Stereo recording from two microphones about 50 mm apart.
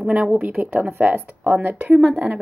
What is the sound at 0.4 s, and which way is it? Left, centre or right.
Speech, right.